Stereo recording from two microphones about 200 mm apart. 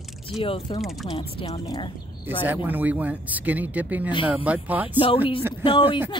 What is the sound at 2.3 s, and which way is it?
Speech, 10° right (ahead or behind).